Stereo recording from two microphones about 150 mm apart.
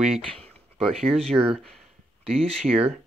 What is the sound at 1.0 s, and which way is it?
Speech, 45° right (ahead or behind).